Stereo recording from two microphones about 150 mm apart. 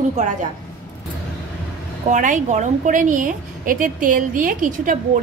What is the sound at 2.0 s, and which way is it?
A woman's voice, 55° right (ahead or behind).